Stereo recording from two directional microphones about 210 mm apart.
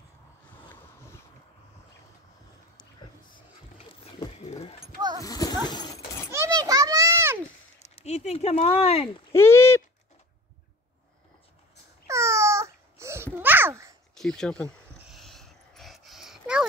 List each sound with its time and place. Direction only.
3.3 s vehicle: 25° left (ahead or behind)
5.2 s horse: 15° left (ahead or behind)
5.7 s dog: 15° left (ahead or behind)
6.3 s children playing: 15° right (ahead or behind)
7.8 s speech: 30° left (ahead or behind)
9.3 s a sound: 10° left (ahead or behind)
12.1 s babbling: 15° right (ahead or behind)
14.1 s a sound: centre (ahead or behind)